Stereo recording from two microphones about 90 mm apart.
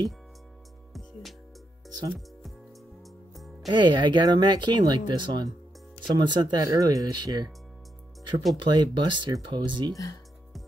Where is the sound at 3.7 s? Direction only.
60° right (ahead or behind).